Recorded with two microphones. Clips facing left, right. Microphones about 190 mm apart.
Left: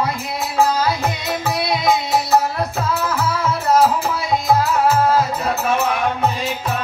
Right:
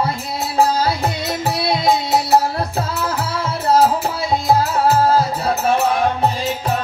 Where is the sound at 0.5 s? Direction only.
35° right (ahead or behind).